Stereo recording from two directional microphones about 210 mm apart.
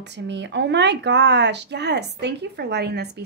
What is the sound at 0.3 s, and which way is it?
A woman's voice, 55° right (ahead or behind).